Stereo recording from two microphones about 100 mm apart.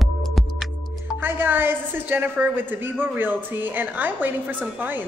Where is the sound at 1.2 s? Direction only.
20° right (ahead or behind).